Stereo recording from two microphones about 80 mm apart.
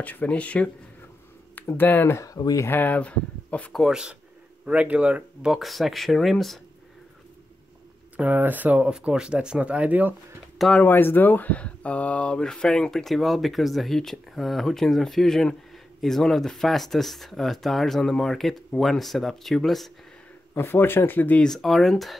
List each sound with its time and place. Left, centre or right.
0.0 s speech: centre
2.1 s speech: left
2.7 s speech: left
3.7 s speech: centre
4.6 s speech: centre
8.2 s speech: right
10.7 s speech: left; by 19.9 s centre
20.5 s speech: left
21.5 s speech: centre